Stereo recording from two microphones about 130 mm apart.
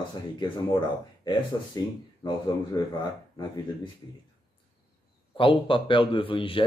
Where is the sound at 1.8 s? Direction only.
30° left (ahead or behind).